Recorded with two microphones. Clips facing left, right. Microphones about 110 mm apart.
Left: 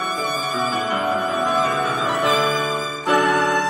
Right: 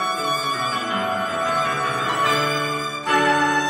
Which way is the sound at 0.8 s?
25° left (ahead or behind).